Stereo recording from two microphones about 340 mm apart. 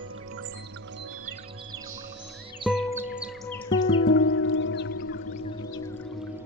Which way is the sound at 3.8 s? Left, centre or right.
Left.